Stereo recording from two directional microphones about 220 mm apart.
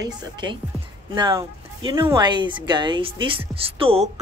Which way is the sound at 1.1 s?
20° right (ahead or behind).